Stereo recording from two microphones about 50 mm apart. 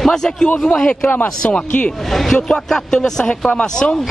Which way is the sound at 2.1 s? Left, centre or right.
Centre.